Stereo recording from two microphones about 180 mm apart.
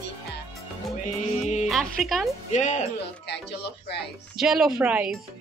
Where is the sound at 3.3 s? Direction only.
70° left (ahead or behind).